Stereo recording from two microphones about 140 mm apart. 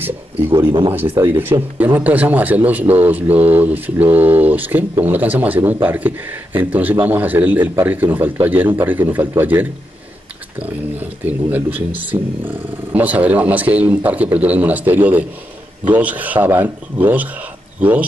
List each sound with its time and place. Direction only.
0.0 s a sound: 15° right (ahead or behind)
1.2 s speech: 15° right (ahead or behind)
11.0 s speech: 15° right (ahead or behind)